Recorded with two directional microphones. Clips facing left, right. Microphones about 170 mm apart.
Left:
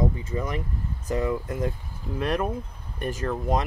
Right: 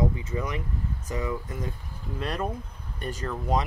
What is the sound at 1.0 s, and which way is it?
Speech, 60° left (ahead or behind).